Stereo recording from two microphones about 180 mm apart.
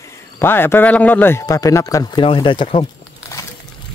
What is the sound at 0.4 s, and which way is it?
A man's voice, 10° left (ahead or behind).